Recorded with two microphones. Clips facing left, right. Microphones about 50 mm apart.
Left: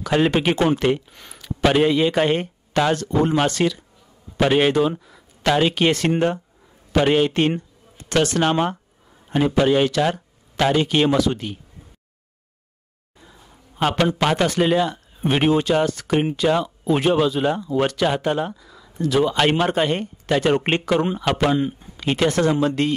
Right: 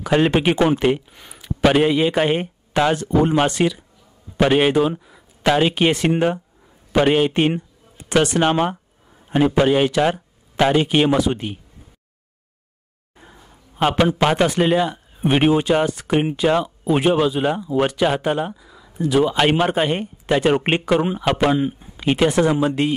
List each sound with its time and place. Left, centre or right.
0.0 s a man's voice: centre
13.2 s a sound: right
13.7 s a man's voice: centre